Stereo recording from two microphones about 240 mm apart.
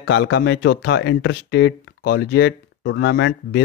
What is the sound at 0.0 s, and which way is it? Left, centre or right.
Speech, left.